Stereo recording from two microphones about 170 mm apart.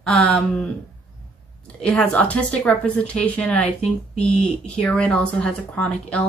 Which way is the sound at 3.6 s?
40° left (ahead or behind).